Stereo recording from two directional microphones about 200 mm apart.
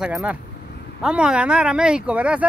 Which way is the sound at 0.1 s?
5° right (ahead or behind).